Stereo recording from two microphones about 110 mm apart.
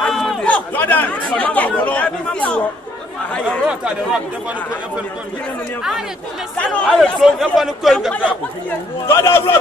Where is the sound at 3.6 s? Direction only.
10° right (ahead or behind).